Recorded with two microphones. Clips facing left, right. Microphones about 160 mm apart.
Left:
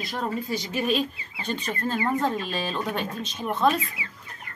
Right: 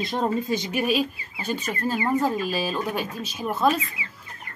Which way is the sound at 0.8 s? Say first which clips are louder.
Right 2 dB; 5° right (ahead or behind).